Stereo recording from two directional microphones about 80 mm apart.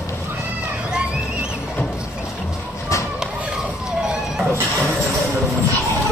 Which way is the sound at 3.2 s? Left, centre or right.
Centre.